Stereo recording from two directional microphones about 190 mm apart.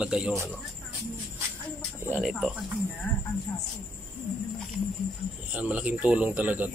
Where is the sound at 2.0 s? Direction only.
5° right (ahead or behind).